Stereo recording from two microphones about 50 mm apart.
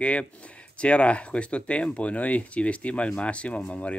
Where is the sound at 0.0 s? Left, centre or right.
Left.